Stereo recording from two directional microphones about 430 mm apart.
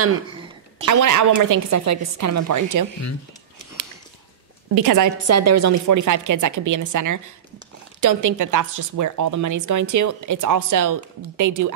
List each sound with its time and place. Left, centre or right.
0.8 s speech: right
4.7 s speech: right